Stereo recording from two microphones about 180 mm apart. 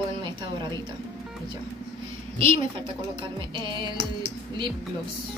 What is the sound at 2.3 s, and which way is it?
Speech, 30° right (ahead or behind).